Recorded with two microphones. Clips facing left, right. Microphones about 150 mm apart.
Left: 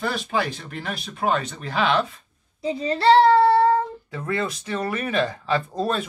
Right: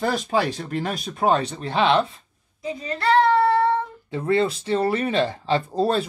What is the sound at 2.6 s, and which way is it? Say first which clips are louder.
Child singing: left 4 dB; 30° left (ahead or behind).